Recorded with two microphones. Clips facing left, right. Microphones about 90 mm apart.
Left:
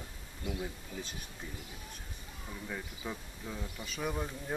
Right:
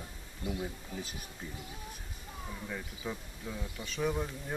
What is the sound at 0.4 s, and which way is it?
Speech, 25° right (ahead or behind).